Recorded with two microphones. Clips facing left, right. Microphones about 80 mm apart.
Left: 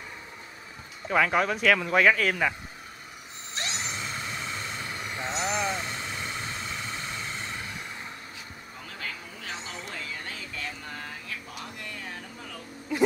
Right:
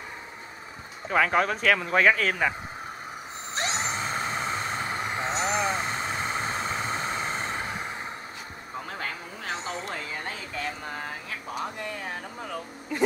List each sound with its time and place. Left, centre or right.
1.1 s speech: right
1.8 s speech: right
3.5 s vehicle: right
9.0 s a sound: right